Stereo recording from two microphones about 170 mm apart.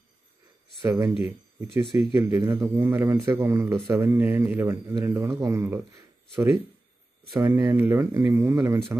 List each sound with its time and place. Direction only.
0.8 s a man's voice: 15° right (ahead or behind)